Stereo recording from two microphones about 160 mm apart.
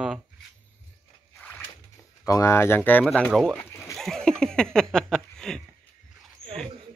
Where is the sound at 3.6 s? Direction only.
15° left (ahead or behind).